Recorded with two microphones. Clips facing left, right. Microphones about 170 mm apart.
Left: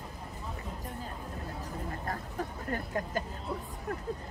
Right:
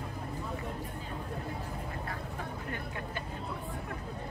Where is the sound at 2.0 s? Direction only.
40° left (ahead or behind).